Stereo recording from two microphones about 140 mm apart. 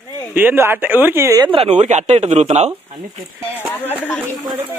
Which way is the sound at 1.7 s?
55° right (ahead or behind).